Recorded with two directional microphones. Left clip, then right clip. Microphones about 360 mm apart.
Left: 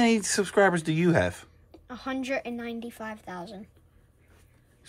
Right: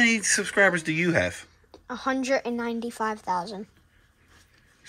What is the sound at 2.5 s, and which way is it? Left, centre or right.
Speech, centre.